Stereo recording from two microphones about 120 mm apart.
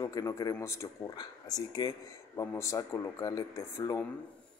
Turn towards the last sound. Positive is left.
turn(degrees=25)  # may be behind; listen again after turning